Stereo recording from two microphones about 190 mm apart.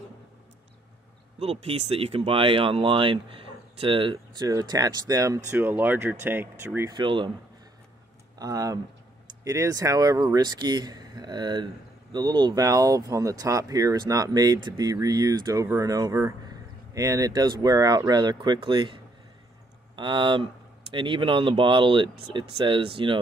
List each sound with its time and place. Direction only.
1.4 s speech: 35° right (ahead or behind); by 7.0 s 10° right (ahead or behind)
7.0 s speech: 25° right (ahead or behind)
8.4 s speech: 20° right (ahead or behind)
20.0 s speech: 25° right (ahead or behind)